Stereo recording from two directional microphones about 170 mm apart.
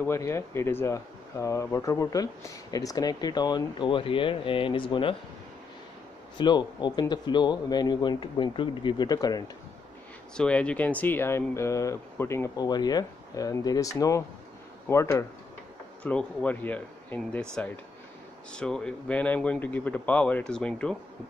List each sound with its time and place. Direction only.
0.0 s speech: 15° left (ahead or behind)
6.3 s speech: 25° left (ahead or behind)
10.3 s speech: 5° left (ahead or behind)
16.0 s speech: 5° left (ahead or behind)
18.5 s speech: 5° left (ahead or behind)